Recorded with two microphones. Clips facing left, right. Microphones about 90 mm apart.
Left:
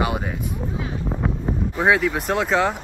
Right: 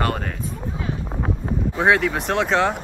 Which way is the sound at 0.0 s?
10° left (ahead or behind).